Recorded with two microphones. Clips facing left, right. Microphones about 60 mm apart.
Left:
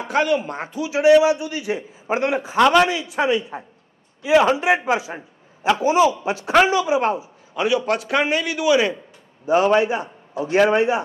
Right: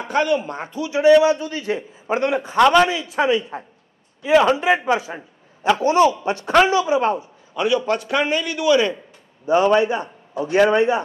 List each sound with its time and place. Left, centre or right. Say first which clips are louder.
0.1 s a man's voice: even; left
2.6 s a man's voice: right 1 dB; centre
3.0 s a man's voice: right 1 dB; centre